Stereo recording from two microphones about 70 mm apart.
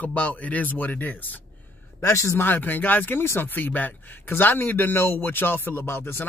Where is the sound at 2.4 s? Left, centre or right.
Left.